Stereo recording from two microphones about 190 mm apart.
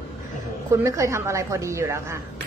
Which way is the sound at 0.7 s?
15° right (ahead or behind).